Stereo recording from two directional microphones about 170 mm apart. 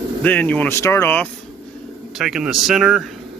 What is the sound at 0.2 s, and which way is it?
Speech, 10° left (ahead or behind).